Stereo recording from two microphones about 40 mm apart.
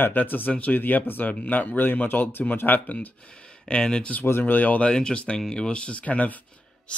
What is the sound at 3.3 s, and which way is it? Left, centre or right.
Speech, left.